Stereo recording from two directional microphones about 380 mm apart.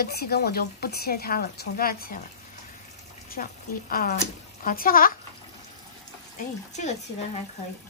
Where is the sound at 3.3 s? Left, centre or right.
Left.